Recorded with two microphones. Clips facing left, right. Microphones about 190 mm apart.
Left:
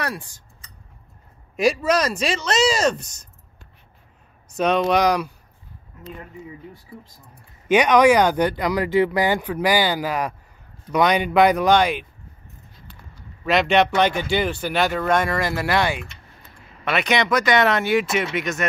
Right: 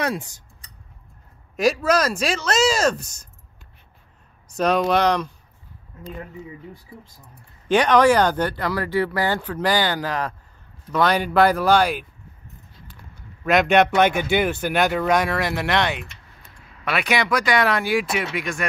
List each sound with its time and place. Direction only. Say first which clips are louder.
0.0 s speech: right 4 dB; 20° right (ahead or behind)
1.6 s speech: even; centre (ahead or behind)
4.6 s speech: even; centre (ahead or behind)
7.6 s speech: left 1 dB; 10° left (ahead or behind)
11.1 s speech: left 1 dB; centre (ahead or behind)
13.7 s speech: right 1 dB; 5° right (ahead or behind)